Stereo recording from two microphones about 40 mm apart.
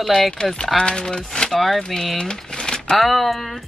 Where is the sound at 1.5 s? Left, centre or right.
Centre.